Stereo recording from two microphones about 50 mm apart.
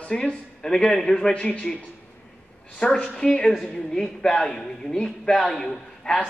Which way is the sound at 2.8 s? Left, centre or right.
Centre.